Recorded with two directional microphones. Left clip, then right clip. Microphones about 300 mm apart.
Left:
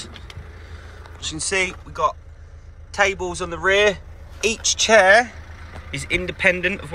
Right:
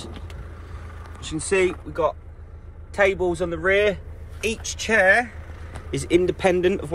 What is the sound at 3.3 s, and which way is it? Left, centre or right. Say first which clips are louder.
Speech: left 1 dB; centre.